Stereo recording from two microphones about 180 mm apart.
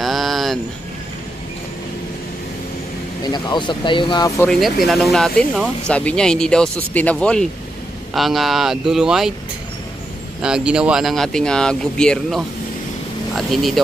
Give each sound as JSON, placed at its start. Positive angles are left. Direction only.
{"t": 0.0, "sound": "a sound", "side_deg": 0}
{"t": 3.3, "sound": "speech", "side_deg": 25}
{"t": 4.5, "sound": "speech", "side_deg": 0}
{"t": 10.4, "sound": "speech", "side_deg": -5}